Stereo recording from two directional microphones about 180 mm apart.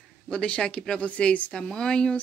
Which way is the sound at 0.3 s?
5° left (ahead or behind).